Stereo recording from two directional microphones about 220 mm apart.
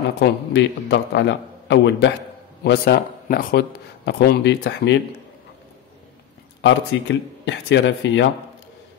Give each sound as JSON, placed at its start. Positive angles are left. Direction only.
{"t": 0.2, "sound": "a man's voice", "side_deg": 50}
{"t": 6.6, "sound": "a man's voice", "side_deg": 55}